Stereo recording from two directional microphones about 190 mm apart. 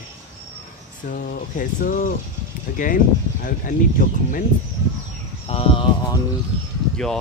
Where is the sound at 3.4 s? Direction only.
45° left (ahead or behind).